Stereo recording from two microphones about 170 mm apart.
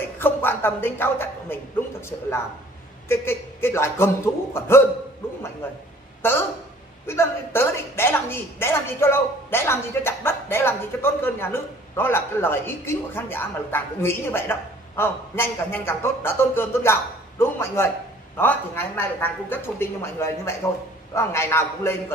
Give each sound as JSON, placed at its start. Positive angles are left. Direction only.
{"t": 0.2, "sound": "a woman's voice", "side_deg": 15}
{"t": 7.1, "sound": "a woman's voice", "side_deg": 15}